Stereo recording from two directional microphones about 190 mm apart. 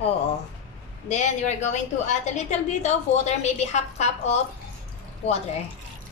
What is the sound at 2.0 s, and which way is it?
A woman's voice, 35° left (ahead or behind).